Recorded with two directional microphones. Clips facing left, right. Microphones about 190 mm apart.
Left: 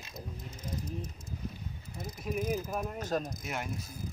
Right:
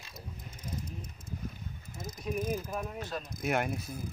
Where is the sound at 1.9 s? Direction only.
45° right (ahead or behind).